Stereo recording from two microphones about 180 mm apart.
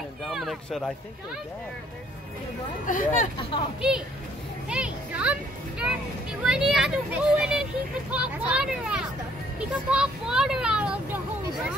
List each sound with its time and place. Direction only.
0.3 s speech: centre (ahead or behind)
2.9 s speech: 45° left (ahead or behind)
3.3 s a child's voice: 30° left (ahead or behind)
4.6 s music: 5° right (ahead or behind)
6.4 s speech: 5° right (ahead or behind)